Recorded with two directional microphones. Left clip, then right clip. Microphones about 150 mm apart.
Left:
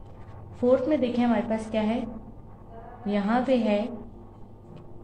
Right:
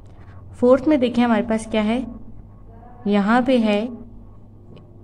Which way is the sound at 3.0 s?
45° right (ahead or behind).